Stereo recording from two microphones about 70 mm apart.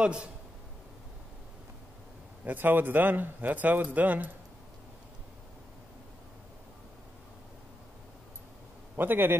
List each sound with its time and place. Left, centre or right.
0.0 s a man's voice: centre
2.4 s a man's voice: right
8.9 s a man's voice: right